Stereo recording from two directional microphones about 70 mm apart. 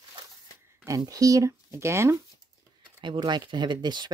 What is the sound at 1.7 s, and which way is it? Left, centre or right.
Speech, right.